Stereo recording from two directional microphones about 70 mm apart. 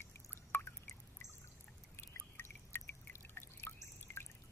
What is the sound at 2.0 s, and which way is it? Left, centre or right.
Drip, left.